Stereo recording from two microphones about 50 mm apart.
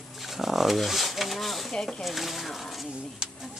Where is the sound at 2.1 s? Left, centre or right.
Centre.